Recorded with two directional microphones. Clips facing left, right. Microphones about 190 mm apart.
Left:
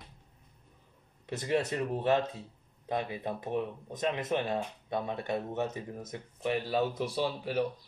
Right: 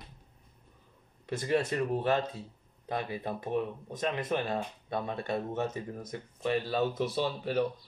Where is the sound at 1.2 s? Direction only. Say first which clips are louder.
Right 1 dB; 20° left (ahead or behind).